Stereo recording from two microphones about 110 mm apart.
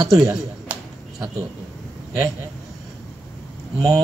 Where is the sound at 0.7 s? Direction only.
15° right (ahead or behind).